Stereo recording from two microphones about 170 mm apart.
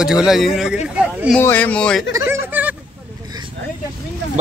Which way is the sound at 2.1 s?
15° right (ahead or behind).